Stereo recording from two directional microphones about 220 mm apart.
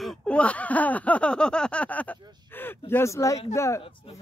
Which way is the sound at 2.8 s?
10° left (ahead or behind).